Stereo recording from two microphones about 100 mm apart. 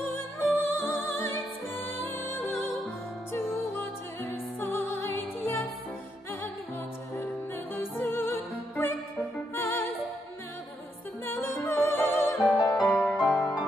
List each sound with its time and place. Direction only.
0.7 s music: 20° left (ahead or behind)
7.7 s music: 20° left (ahead or behind)
11.2 s music: 20° left (ahead or behind)
12.4 s music: 35° left (ahead or behind)
12.7 s music: 5° left (ahead or behind)